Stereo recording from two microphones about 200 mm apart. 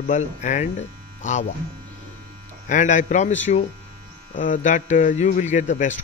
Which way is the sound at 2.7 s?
40° left (ahead or behind).